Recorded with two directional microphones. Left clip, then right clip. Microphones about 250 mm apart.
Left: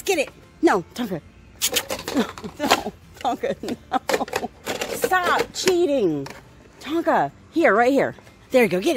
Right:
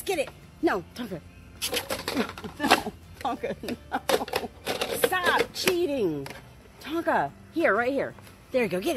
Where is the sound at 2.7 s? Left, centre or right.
Left.